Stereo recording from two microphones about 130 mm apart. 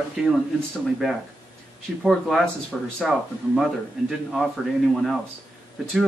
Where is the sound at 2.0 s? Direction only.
Centre (ahead or behind).